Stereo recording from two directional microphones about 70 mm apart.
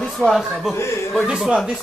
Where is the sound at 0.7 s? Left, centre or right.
Left.